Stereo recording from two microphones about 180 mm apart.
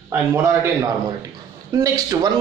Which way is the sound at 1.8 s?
20° right (ahead or behind).